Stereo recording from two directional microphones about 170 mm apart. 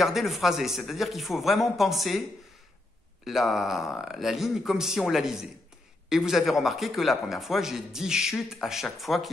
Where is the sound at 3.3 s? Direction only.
Centre (ahead or behind).